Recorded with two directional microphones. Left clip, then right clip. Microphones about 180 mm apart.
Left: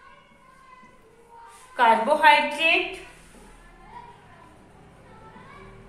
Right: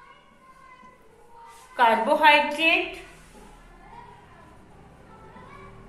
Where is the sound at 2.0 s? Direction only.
15° right (ahead or behind).